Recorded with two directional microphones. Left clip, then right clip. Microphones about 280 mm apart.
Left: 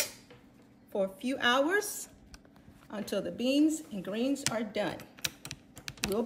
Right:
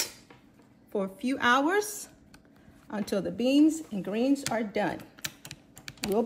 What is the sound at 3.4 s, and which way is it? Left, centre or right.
Speech, right.